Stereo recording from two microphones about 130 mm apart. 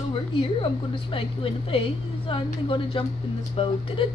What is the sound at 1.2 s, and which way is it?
Speech, 45° left (ahead or behind).